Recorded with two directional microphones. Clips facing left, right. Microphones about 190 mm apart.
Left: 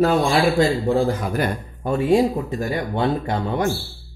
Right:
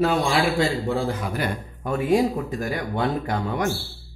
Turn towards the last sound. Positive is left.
turn(degrees=30)  # may be behind; listen again after turning